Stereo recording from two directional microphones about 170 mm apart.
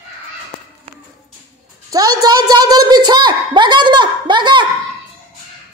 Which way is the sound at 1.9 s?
20° right (ahead or behind).